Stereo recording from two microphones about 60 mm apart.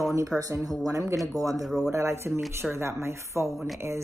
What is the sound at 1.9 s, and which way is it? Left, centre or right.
A woman's voice, right.